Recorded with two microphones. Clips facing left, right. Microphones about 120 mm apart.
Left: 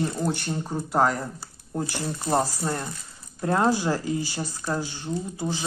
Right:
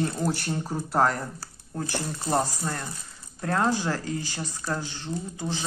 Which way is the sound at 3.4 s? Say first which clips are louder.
Left 3 dB; 15° left (ahead or behind).